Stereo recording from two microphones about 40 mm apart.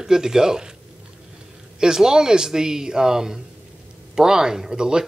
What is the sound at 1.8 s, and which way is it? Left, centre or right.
Speech, centre.